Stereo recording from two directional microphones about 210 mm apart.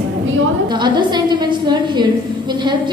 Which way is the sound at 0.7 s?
20° right (ahead or behind).